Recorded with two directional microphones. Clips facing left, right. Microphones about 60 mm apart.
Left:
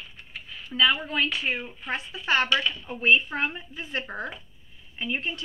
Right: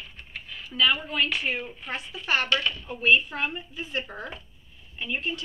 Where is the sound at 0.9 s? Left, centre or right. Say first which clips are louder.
Left 1 dB; left.